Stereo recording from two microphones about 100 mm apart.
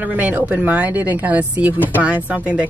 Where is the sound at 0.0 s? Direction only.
15° right (ahead or behind).